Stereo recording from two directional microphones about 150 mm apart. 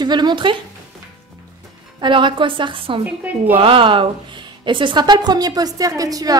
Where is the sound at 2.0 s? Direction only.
35° right (ahead or behind).